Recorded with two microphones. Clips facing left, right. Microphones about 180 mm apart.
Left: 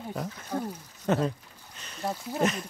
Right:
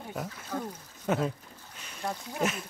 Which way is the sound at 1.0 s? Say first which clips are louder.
Left 2 dB; 5° right (ahead or behind).